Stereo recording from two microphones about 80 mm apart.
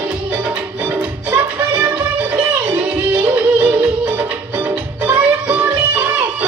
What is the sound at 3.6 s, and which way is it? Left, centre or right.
Music, right.